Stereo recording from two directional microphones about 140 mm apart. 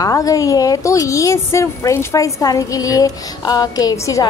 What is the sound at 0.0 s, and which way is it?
Speech, 25° left (ahead or behind).